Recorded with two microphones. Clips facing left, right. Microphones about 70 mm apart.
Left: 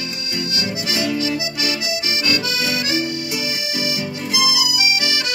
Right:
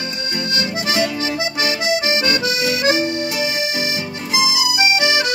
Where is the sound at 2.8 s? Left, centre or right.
Right.